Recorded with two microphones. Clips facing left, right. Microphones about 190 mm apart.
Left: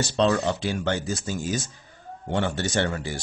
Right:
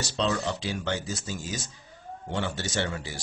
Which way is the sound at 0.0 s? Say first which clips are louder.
Left 6 dB; 55° left (ahead or behind).